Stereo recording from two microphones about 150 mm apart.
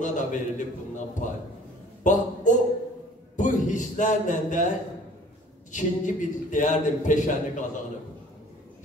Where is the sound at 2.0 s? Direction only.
60° left (ahead or behind).